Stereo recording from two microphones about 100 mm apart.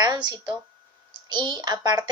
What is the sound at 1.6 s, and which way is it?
Speech, 40° right (ahead or behind).